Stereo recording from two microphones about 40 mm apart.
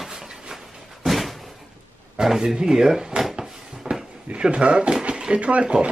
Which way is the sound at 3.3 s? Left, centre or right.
Centre.